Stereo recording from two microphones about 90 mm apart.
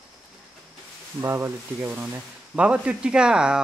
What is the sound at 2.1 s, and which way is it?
Speech, 15° right (ahead or behind).